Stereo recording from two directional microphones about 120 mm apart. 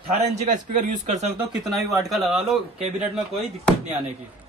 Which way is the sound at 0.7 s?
85° right.